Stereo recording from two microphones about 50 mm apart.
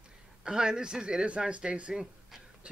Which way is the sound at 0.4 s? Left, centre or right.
Centre.